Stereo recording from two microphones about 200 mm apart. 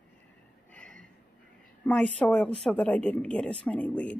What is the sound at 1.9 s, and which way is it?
Speech, 5° left (ahead or behind).